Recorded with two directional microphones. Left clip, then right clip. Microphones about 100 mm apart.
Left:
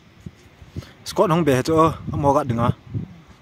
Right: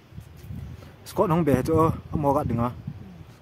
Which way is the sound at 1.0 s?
30° left (ahead or behind).